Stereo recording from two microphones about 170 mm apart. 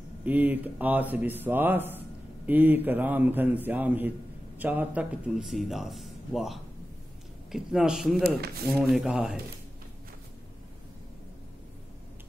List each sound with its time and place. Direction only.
0.2 s a man's voice: 10° right (ahead or behind)
8.2 s speech: 65° right (ahead or behind)
8.8 s a man's voice: centre (ahead or behind)